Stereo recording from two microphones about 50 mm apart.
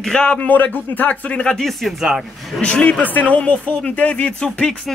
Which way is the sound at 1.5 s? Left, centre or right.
Centre.